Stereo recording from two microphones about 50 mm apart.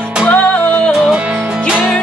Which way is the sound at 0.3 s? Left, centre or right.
Left.